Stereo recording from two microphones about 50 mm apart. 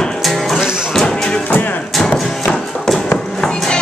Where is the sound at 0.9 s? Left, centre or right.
Centre.